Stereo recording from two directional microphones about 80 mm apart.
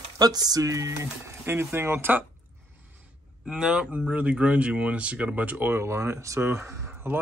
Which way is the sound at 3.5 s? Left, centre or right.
Centre.